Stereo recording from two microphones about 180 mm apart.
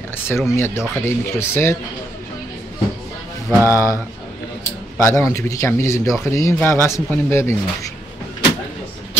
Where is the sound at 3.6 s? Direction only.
15° left (ahead or behind).